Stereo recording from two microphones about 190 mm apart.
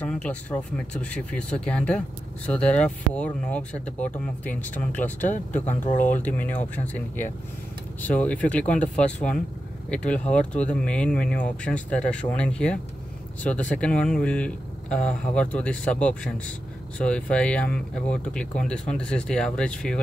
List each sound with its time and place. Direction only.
0.0 s speech: 5° left (ahead or behind)
5.7 s speech: 40° left (ahead or behind)
6.0 s speech: 10° left (ahead or behind)